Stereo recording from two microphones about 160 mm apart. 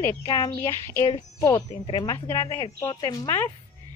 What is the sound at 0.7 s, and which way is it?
Speech, 15° left (ahead or behind).